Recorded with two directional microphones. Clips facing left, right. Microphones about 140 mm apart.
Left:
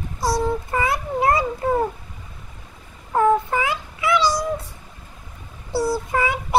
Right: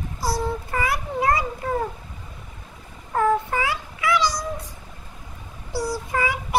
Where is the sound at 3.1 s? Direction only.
20° left (ahead or behind).